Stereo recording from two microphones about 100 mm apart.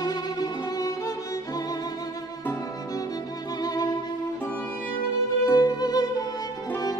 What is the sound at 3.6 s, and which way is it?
Music, 40° left (ahead or behind).